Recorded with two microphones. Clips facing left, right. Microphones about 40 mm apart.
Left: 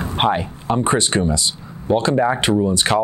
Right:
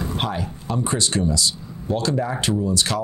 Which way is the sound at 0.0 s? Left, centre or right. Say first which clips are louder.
Left 7 dB; left.